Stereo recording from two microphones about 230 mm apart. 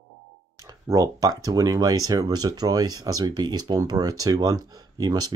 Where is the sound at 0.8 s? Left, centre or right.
Centre.